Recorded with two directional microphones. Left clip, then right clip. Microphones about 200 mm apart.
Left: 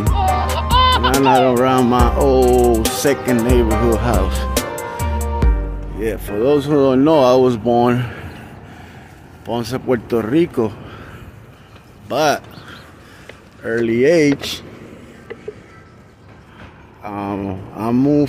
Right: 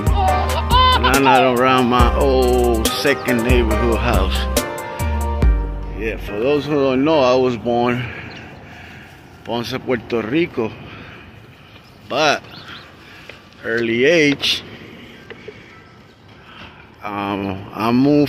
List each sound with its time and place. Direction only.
0.0 s music: centre (ahead or behind)
1.6 s speech: 20° left (ahead or behind)
2.4 s speech: centre (ahead or behind)
4.2 s speech: 15° left (ahead or behind)
4.6 s music: centre (ahead or behind)
5.9 s speech: 30° left (ahead or behind)
9.5 s speech: 20° left (ahead or behind)
12.1 s a sound: 20° left (ahead or behind)
13.6 s speech: 15° left (ahead or behind)
17.0 s speech: 5° left (ahead or behind)